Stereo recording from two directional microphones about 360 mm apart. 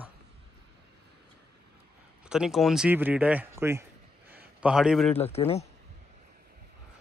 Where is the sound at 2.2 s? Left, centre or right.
Centre.